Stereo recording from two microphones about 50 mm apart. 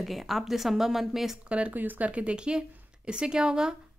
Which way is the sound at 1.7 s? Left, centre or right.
Right.